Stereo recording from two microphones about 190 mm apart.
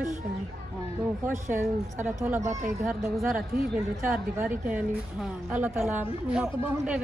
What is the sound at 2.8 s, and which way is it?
A woman's voice, centre (ahead or behind).